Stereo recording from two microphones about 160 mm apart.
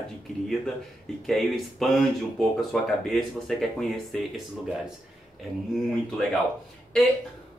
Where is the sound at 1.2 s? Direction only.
Centre (ahead or behind).